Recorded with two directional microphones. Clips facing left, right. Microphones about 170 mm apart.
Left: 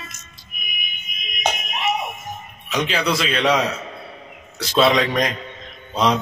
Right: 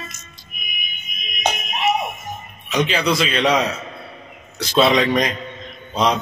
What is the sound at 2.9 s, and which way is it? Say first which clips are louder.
Speech: right 2 dB; centre (ahead or behind).